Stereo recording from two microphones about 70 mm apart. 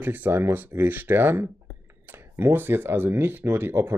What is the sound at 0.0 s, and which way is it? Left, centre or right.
Speech, right.